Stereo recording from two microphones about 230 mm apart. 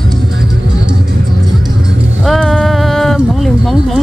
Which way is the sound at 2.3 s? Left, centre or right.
Centre.